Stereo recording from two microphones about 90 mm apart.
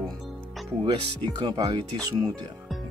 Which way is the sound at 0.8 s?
60° right (ahead or behind).